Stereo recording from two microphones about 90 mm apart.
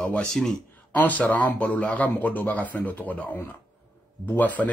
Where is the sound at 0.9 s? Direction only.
15° left (ahead or behind).